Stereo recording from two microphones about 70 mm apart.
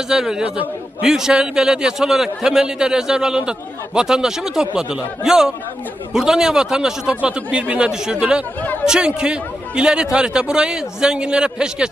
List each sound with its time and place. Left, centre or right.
0.1 s a man's voice: centre